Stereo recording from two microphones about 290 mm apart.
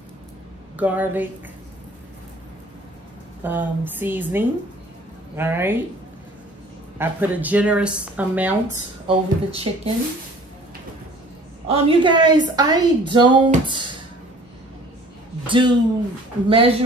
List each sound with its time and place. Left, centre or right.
0.7 s speech: centre
3.4 s a woman's voice: centre
7.0 s speech: centre
9.0 s speech: centre
11.6 s a woman's voice: centre
15.4 s a woman's voice: centre